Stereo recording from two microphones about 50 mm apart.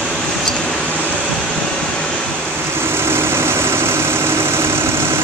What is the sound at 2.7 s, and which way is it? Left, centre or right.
Vehicle, right.